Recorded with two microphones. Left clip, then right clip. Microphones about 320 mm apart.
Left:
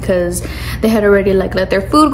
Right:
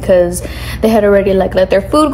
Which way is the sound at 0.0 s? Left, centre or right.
Centre.